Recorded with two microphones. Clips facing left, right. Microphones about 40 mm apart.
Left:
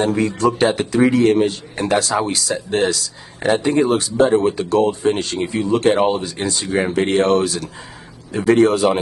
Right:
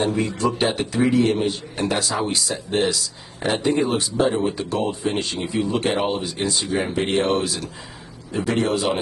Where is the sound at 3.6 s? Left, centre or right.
Left.